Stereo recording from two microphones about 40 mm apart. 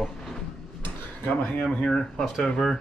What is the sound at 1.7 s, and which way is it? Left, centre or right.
Speech, left.